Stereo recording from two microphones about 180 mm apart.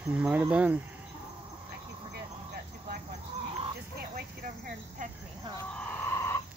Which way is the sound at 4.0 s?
55° right (ahead or behind).